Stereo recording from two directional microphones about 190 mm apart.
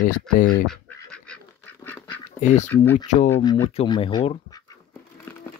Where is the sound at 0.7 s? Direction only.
5° left (ahead or behind).